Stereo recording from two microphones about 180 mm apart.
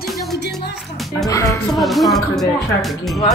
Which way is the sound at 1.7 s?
Centre (ahead or behind).